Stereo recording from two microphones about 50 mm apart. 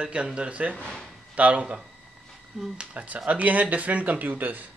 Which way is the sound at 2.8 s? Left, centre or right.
Right.